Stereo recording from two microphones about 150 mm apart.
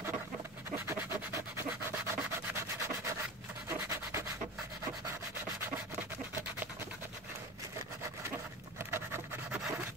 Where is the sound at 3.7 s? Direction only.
15° right (ahead or behind).